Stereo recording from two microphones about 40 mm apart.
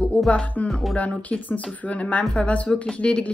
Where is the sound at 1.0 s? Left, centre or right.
Left.